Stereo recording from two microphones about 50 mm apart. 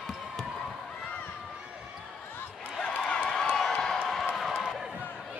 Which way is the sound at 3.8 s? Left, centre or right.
Centre.